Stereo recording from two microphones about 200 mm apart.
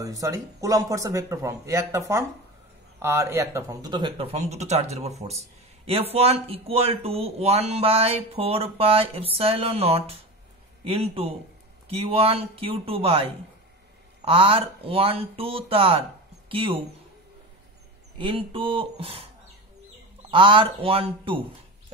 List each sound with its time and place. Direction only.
0.0 s speech: 15° right (ahead or behind)
18.1 s speech: 25° right (ahead or behind)